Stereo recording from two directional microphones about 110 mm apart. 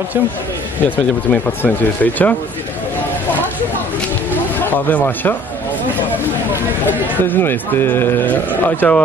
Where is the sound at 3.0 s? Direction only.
15° left (ahead or behind).